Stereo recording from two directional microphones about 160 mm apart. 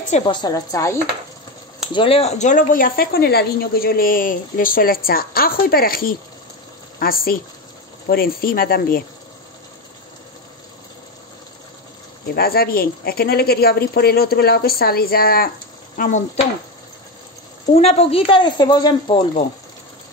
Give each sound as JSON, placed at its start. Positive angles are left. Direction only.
{"t": 0.3, "sound": "a woman's voice", "side_deg": 25}
{"t": 2.0, "sound": "speech", "side_deg": 35}
{"t": 12.4, "sound": "speech", "side_deg": 70}
{"t": 16.0, "sound": "speech", "side_deg": 50}
{"t": 17.7, "sound": "a woman's voice", "side_deg": 40}